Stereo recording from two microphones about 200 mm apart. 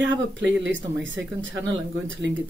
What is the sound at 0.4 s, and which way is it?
Speech, 65° right (ahead or behind).